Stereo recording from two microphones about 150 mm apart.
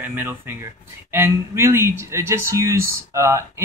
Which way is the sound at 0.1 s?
15° right (ahead or behind).